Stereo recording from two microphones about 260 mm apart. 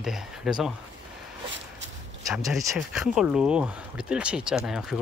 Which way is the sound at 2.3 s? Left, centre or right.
Centre.